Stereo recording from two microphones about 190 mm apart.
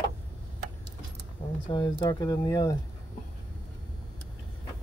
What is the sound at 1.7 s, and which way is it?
Speech, 25° left (ahead or behind).